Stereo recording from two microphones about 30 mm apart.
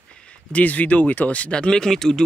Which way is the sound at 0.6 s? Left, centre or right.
Left.